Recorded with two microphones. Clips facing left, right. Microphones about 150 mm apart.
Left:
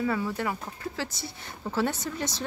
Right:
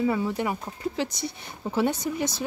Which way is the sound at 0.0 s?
20° right (ahead or behind).